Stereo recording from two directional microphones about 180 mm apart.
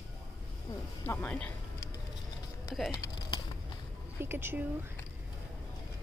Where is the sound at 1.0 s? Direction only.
10° left (ahead or behind).